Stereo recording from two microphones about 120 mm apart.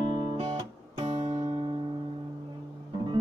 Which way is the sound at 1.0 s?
55° right (ahead or behind).